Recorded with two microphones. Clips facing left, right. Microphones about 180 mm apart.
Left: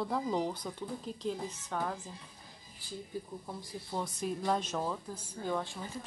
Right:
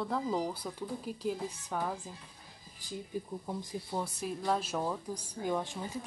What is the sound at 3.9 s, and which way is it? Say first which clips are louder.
Speech: left 2 dB; 5° right (ahead or behind).